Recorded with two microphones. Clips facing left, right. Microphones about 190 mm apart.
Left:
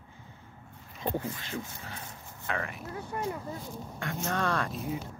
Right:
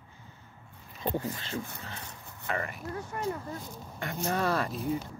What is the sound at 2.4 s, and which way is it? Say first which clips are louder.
Speech: right 1 dB; centre (ahead or behind).